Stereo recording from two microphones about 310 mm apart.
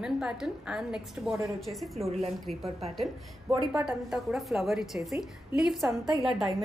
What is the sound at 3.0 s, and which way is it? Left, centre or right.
A woman's voice, centre.